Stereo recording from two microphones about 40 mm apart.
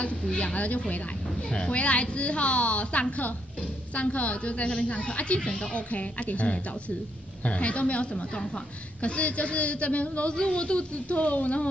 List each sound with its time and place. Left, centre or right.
0.4 s a woman's voice: left